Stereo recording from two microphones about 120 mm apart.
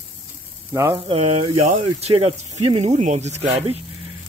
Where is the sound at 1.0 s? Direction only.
55° right (ahead or behind).